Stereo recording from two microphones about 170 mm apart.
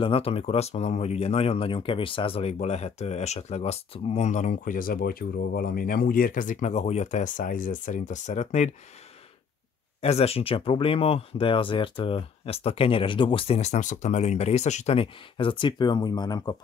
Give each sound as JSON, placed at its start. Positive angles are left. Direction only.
{"t": 0.0, "sound": "speech", "side_deg": 35}
{"t": 10.0, "sound": "speech", "side_deg": 35}